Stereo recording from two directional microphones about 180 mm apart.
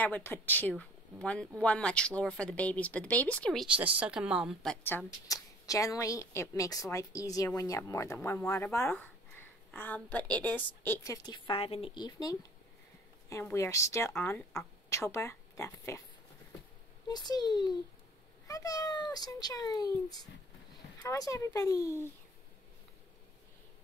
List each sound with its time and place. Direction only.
0.0 s a woman's voice: 10° left (ahead or behind)
3.6 s speech: 5° right (ahead or behind)
4.8 s a woman's voice: 15° left (ahead or behind)
11.2 s a woman's voice: 25° left (ahead or behind)
17.1 s a woman's voice: 25° left (ahead or behind)